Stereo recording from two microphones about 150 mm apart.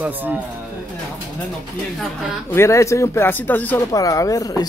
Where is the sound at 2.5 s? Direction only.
20° left (ahead or behind).